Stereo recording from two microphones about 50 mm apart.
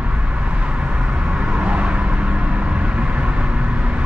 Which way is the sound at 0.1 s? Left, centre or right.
Right.